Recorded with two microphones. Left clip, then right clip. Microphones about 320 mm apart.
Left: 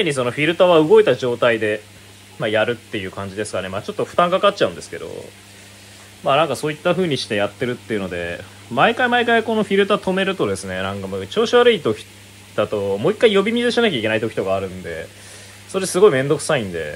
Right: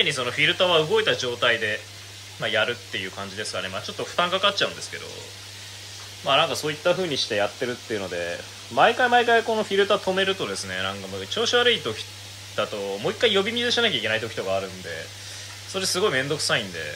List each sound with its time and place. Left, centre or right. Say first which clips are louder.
0.0 s speech: left 3 dB; centre
6.2 s speech: left 4 dB; centre
8.7 s speech: left 2 dB; centre
15.7 s speech: left 9 dB; centre